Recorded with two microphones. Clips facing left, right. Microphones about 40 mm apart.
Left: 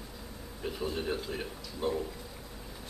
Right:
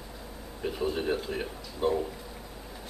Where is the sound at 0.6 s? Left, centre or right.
Centre.